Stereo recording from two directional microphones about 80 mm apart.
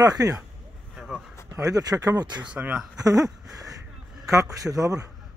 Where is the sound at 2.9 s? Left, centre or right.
Right.